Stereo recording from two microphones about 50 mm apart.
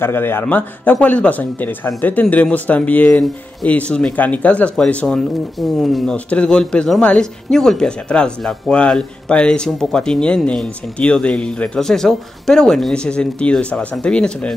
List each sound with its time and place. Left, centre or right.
0.0 s a man's voice: left
1.0 s speech: left
5.6 s speech: centre
6.1 s speech: left
7.5 s speech: centre
11.8 s speech: centre
12.9 s speech: centre